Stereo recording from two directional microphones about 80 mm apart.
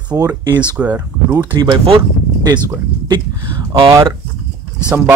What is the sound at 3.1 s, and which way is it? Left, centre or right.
Speech, right.